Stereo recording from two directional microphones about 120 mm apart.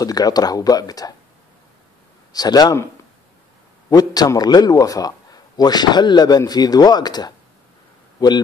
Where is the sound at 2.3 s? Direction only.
35° left (ahead or behind).